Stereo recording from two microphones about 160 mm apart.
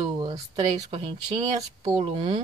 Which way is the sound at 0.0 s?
30° right (ahead or behind).